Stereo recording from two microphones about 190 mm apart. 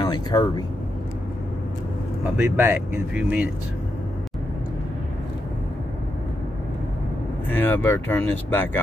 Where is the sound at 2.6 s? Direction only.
10° right (ahead or behind).